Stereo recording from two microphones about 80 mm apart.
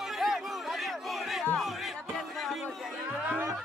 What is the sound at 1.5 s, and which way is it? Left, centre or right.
Music, centre.